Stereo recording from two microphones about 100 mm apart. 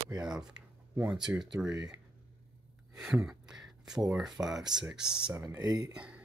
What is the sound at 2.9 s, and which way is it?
Speech, 5° right (ahead or behind).